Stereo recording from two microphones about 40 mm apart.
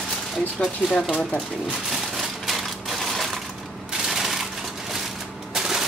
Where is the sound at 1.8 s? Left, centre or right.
Centre.